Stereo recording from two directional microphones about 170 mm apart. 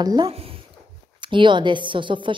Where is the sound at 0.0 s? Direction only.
25° right (ahead or behind).